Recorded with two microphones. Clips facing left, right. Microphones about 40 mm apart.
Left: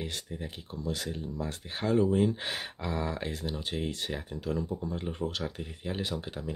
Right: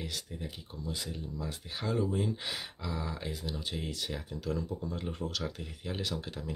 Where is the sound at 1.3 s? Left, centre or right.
Left.